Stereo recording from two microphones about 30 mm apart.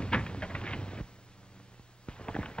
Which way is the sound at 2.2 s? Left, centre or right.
Left.